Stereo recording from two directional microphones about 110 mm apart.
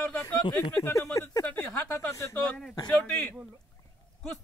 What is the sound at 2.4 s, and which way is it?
Speech, 10° left (ahead or behind).